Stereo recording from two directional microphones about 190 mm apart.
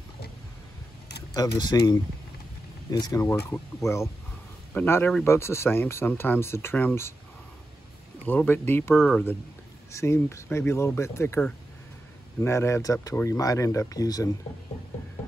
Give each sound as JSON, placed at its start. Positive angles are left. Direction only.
{"t": 1.6, "sound": "speech", "side_deg": 25}
{"t": 8.3, "sound": "speech", "side_deg": 10}